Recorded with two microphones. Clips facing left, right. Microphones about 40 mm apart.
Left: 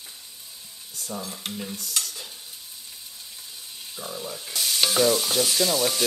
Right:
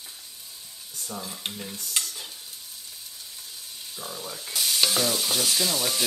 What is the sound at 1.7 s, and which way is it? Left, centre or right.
Stir, right.